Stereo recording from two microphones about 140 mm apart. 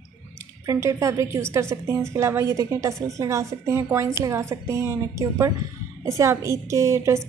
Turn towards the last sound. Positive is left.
turn(degrees=-20)  # may be behind; listen again after turning